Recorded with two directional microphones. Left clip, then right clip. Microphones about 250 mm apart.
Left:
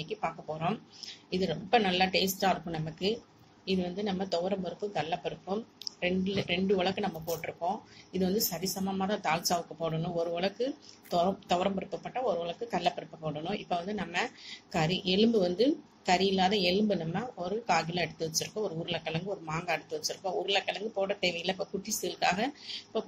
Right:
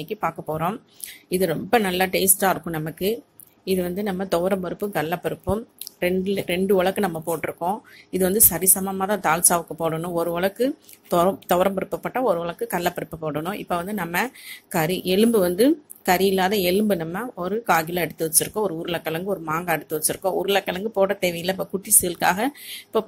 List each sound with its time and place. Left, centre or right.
0.0 s speech: right